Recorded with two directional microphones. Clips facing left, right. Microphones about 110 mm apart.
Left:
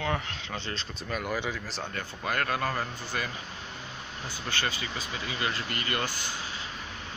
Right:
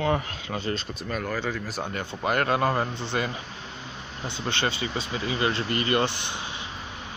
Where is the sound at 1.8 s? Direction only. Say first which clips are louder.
Right 7 dB; 20° right (ahead or behind).